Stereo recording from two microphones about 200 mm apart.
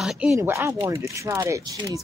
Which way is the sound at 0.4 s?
15° right (ahead or behind).